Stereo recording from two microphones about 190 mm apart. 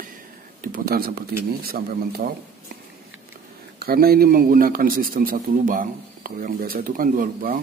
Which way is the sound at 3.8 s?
55° right (ahead or behind).